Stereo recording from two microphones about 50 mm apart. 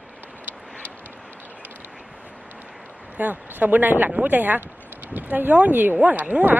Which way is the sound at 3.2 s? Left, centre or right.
Right.